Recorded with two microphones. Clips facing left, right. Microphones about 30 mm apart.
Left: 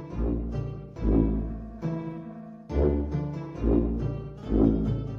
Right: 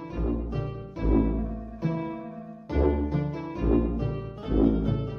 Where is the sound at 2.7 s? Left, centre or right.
Right.